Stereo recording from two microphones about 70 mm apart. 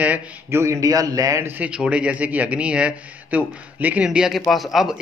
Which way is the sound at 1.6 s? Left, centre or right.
Centre.